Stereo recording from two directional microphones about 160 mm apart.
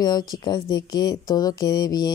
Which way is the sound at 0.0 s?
25° left (ahead or behind).